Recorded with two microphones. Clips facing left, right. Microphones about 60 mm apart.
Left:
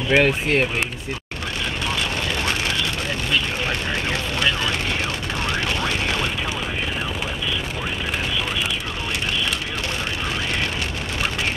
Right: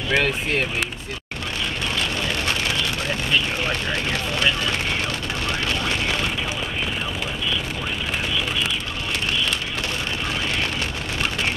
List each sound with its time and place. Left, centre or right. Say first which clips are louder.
0.1 s speech: left 4 dB; left